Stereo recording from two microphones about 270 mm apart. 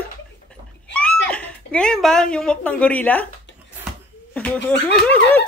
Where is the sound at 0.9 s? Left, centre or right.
Centre.